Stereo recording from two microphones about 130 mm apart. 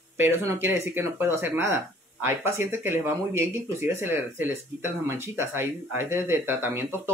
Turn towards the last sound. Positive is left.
turn(degrees=-15)  # may be behind; listen again after turning